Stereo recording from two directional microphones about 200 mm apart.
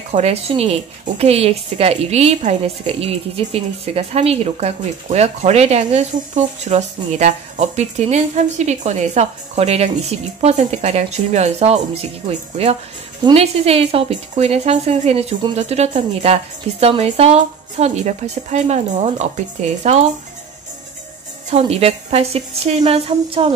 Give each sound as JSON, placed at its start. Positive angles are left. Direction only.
{"t": 0.1, "sound": "a woman's voice", "side_deg": -30}
{"t": 21.5, "sound": "a woman's voice", "side_deg": -30}